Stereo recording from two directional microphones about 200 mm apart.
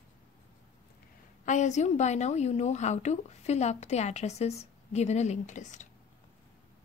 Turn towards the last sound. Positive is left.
turn(degrees=35)  # may be behind; listen again after turning